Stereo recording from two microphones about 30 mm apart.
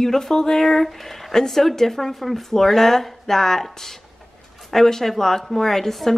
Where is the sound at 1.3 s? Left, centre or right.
Centre.